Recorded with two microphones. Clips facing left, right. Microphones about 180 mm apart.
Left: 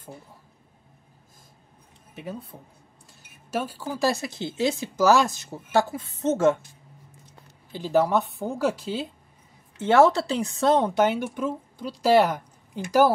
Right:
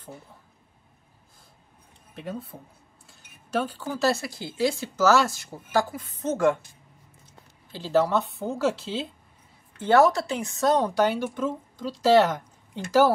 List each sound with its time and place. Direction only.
2.1 s a woman's voice: 5° left (ahead or behind); by 6.6 s 25° left (ahead or behind)
7.8 s speech: 15° left (ahead or behind)
9.8 s a woman's voice: 25° left (ahead or behind)